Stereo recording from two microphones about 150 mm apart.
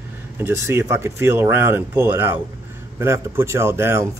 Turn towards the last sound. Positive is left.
turn(degrees=-15)  # may be behind; listen again after turning